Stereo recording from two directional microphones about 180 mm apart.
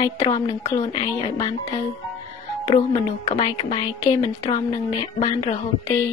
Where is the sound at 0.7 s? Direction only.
25° left (ahead or behind).